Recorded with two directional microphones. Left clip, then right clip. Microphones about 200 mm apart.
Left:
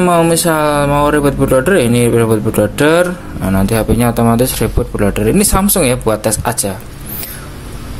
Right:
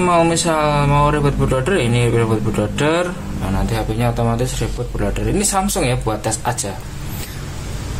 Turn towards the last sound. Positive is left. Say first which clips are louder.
# left 5 dB
turn(degrees=35)  # may be behind; listen again after turning